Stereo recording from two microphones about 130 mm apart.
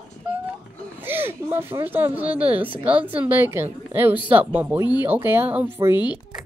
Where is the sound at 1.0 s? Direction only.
15° right (ahead or behind).